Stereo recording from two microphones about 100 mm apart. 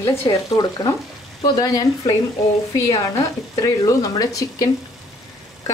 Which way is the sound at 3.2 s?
35° left (ahead or behind).